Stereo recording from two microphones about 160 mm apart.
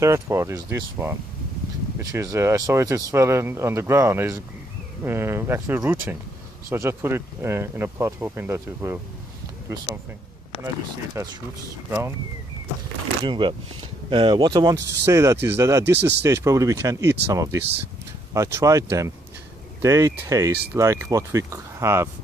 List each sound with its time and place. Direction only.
0.0 s speech: 15° right (ahead or behind)
11.2 s speech: 15° right (ahead or behind)
13.2 s speech: 30° right (ahead or behind)